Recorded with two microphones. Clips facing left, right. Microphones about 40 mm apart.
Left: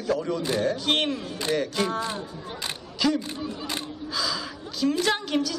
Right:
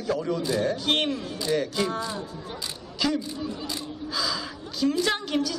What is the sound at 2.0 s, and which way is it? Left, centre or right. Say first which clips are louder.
Speech: left 1 dB; left.